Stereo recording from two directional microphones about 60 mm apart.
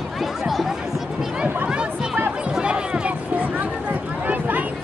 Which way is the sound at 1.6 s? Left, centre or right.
Centre.